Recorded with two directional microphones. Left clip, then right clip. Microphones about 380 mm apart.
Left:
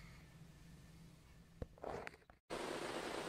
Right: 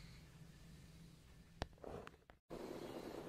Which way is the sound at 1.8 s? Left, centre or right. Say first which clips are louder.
Left 5 dB; left.